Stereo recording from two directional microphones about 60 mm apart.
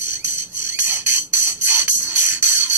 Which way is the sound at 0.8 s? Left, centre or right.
Right.